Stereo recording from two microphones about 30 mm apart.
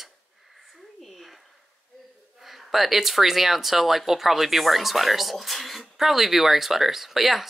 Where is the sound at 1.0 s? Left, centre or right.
Centre.